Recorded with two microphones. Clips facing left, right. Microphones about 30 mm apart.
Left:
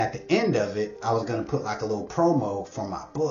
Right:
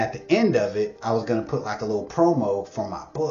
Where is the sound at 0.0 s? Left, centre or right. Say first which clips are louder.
Right 3 dB; centre.